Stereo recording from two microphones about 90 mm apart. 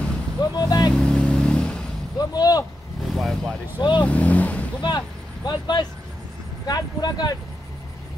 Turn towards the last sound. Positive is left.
turn(degrees=45)  # may be behind; listen again after turning